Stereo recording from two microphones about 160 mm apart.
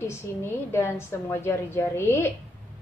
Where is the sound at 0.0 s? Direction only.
15° left (ahead or behind).